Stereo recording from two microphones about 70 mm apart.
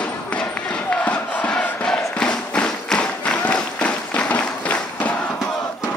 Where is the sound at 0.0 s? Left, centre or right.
Centre.